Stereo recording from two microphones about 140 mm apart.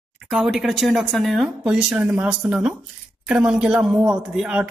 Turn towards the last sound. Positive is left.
turn(degrees=-5)  # may be behind; listen again after turning